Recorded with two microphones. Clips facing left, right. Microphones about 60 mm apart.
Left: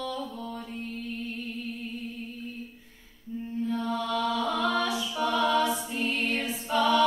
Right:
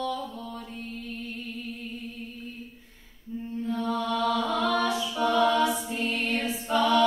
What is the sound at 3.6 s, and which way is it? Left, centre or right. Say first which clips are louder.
Mantra: right 1 dB; centre.